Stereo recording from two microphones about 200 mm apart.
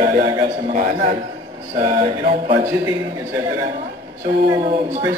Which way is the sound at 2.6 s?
15° right (ahead or behind).